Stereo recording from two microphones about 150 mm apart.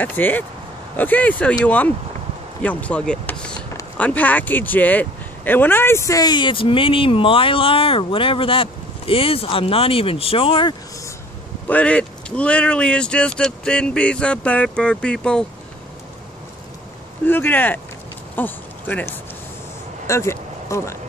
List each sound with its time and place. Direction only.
0.0 s speech: 10° left (ahead or behind); by 10.8 s 35° left (ahead or behind)
11.6 s speech: 10° left (ahead or behind)
17.3 s speech: 15° left (ahead or behind)